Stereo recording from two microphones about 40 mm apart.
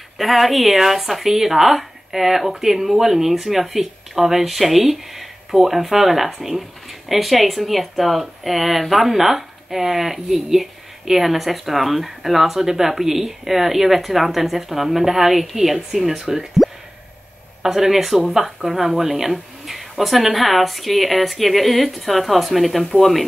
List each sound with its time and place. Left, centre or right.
0.2 s speech: centre